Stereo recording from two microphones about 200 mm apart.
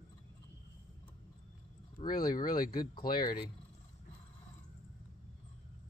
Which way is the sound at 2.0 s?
25° left (ahead or behind).